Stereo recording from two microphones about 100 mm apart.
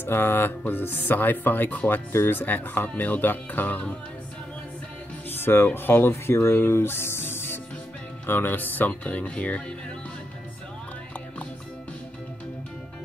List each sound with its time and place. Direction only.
0.0 s speech: 20° left (ahead or behind)
5.4 s speech: 20° left (ahead or behind)